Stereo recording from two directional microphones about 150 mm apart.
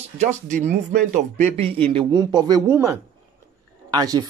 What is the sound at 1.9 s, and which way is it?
Speech, 30° right (ahead or behind).